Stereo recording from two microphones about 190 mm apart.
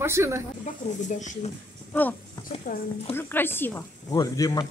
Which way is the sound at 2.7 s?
45° left (ahead or behind).